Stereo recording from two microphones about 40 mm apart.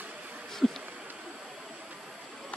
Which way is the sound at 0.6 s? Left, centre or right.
Centre.